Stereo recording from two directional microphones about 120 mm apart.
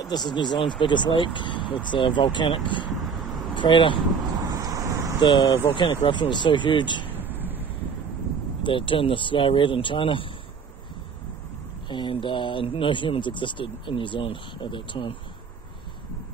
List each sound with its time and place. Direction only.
0.0 s speech: 35° left (ahead or behind)
4.5 s vehicle: 30° right (ahead or behind)
5.2 s speech: 40° left (ahead or behind)
7.1 s a sound: 15° right (ahead or behind)
8.6 s speech: 45° left (ahead or behind)
11.9 s speech: 45° left (ahead or behind)